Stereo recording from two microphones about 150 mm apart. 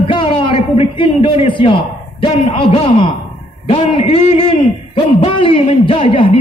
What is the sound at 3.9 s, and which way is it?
A man's voice, 40° left (ahead or behind).